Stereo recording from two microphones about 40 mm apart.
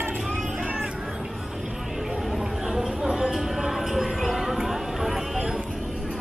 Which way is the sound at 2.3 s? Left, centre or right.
Centre.